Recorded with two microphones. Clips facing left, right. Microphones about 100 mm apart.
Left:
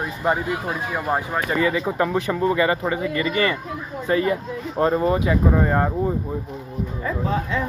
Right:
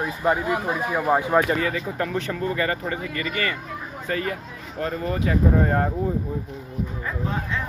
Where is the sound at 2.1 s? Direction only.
15° left (ahead or behind).